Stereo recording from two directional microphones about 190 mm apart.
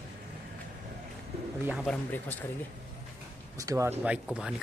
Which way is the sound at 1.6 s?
5° right (ahead or behind).